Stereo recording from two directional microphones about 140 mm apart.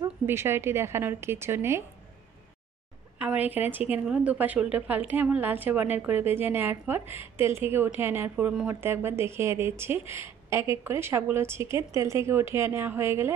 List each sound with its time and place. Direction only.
0.3 s a woman's voice: 20° right (ahead or behind)
3.2 s a woman's voice: 10° right (ahead or behind)